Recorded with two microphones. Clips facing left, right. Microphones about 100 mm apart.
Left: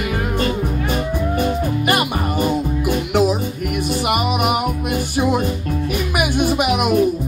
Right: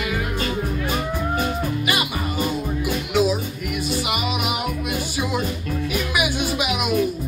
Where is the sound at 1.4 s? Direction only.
55° left (ahead or behind).